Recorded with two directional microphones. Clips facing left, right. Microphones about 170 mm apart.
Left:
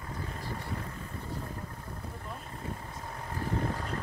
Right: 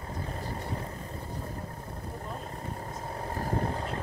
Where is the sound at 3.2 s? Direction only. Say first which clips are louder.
Right 2 dB; 40° right (ahead or behind).